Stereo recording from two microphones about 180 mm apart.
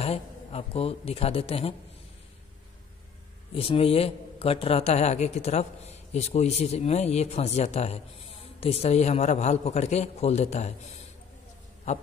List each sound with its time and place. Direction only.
0.0 s a man's voice: 35° left (ahead or behind)
3.5 s a man's voice: 30° left (ahead or behind)
11.9 s a man's voice: 40° left (ahead or behind)